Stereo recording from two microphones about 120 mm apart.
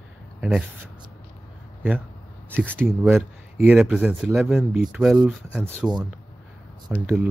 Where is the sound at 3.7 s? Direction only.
10° right (ahead or behind).